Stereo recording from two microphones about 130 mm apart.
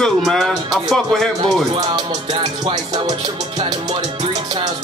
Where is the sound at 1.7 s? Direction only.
35° right (ahead or behind).